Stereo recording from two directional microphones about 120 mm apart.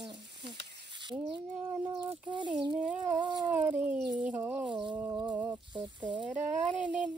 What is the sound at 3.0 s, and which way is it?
Speech, 35° right (ahead or behind).